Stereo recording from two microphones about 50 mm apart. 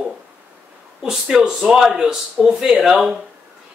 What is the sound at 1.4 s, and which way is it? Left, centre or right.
Speech, centre.